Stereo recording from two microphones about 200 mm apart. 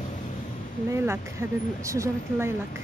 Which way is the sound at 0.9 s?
10° right (ahead or behind).